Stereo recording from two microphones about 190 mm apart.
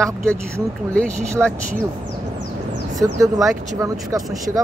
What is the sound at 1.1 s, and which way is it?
Speech, 15° right (ahead or behind).